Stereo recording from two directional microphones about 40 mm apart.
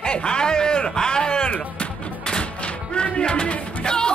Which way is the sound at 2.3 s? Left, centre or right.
Left.